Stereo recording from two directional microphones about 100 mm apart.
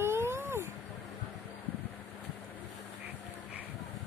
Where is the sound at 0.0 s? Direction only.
25° right (ahead or behind).